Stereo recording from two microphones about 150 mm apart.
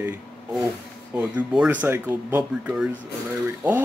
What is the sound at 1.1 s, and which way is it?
Speech, 10° right (ahead or behind).